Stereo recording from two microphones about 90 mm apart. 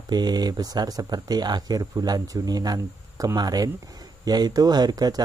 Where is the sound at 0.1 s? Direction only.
50° right (ahead or behind).